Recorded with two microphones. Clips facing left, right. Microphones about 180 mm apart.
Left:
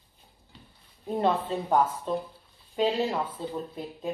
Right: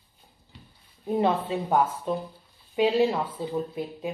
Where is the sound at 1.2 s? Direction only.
10° right (ahead or behind).